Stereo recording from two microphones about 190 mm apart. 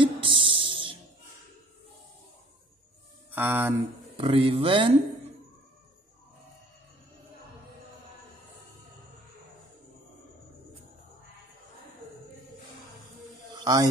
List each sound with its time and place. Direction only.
0.0 s music: 25° right (ahead or behind)
3.3 s speech: 10° right (ahead or behind)
4.2 s speech: 30° right (ahead or behind)
13.5 s a sound: 20° right (ahead or behind)